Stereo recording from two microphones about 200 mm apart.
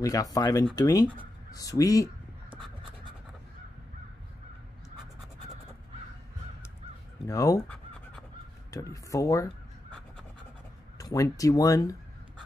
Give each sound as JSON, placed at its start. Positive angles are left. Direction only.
{"t": 0.0, "sound": "speech", "side_deg": 15}
{"t": 7.2, "sound": "speech", "side_deg": 15}
{"t": 8.9, "sound": "speech", "side_deg": 15}
{"t": 11.0, "sound": "speech", "side_deg": 15}